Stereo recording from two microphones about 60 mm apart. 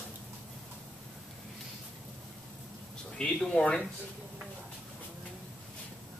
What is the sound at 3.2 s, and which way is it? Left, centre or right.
Speech, centre.